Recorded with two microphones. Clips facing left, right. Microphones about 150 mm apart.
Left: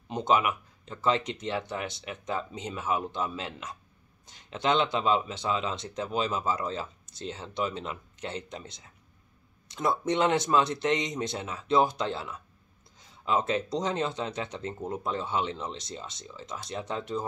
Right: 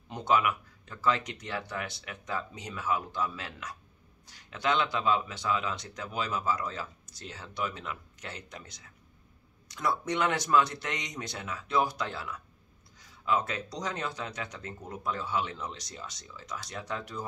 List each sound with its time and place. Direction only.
0.1 s speech: 20° left (ahead or behind)